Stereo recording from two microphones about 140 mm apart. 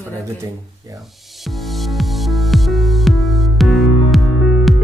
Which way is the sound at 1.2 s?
Centre (ahead or behind).